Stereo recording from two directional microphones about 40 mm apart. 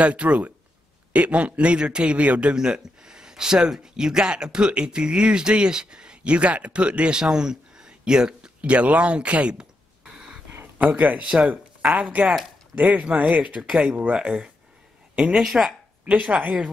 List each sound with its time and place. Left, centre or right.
0.0 s a man's voice: right
2.5 s speech: centre
9.6 s a sound: centre
10.8 s a man's voice: right
13.7 s speech: centre
14.1 s speech: right
16.3 s speech: right